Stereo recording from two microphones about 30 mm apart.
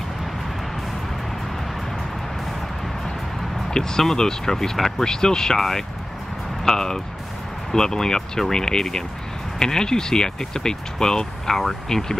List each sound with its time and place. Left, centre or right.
3.8 s speech: centre
5.0 s speech: left
6.6 s music: left
7.7 s speech: centre